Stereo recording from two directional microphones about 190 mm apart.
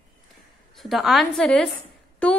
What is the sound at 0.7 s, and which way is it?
A woman's voice, centre (ahead or behind).